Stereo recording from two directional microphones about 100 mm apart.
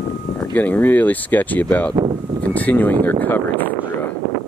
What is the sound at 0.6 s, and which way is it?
Speech, 15° left (ahead or behind).